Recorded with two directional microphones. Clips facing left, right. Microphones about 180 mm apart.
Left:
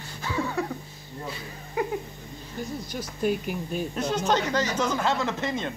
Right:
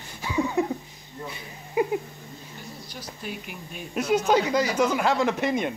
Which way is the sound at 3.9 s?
10° right (ahead or behind).